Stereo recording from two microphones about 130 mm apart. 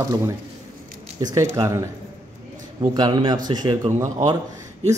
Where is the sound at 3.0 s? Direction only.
35° right (ahead or behind).